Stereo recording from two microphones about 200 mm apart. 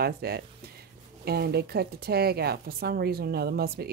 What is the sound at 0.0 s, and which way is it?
A woman's voice, 50° right (ahead or behind).